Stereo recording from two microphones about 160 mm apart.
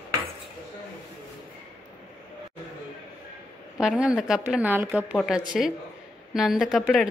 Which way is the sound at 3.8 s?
5° right (ahead or behind).